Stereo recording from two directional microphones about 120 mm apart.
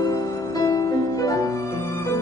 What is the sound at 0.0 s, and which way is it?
Music, 30° left (ahead or behind).